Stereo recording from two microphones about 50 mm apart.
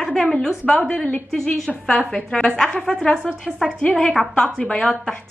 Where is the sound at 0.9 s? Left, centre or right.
Left.